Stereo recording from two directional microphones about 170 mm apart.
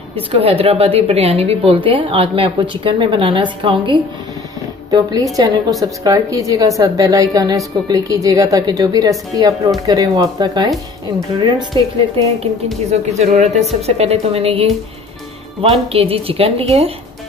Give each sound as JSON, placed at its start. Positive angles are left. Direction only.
{"t": 0.1, "sound": "a woman's voice", "side_deg": -35}
{"t": 13.2, "sound": "a woman's voice", "side_deg": -40}